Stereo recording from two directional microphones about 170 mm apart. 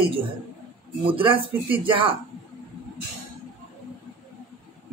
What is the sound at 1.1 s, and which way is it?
Speech, 30° right (ahead or behind).